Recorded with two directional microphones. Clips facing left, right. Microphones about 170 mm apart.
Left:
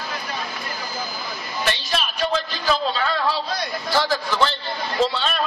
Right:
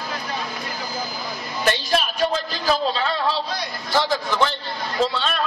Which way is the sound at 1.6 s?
45° right (ahead or behind).